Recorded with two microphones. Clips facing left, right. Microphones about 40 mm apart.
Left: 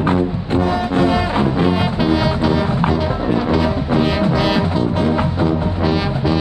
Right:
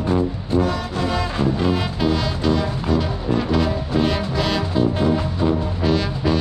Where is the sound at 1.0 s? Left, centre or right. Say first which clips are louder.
Left 3 dB; left.